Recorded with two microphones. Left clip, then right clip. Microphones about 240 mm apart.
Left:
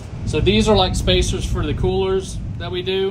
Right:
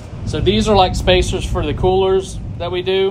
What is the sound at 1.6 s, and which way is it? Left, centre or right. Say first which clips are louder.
Speech: right 6 dB; left.